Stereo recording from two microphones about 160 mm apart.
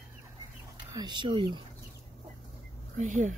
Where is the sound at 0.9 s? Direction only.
25° right (ahead or behind).